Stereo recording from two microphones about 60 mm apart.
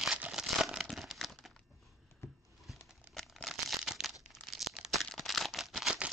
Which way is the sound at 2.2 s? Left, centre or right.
Left.